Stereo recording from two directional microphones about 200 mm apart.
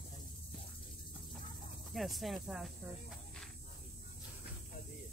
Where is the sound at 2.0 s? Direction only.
Centre (ahead or behind).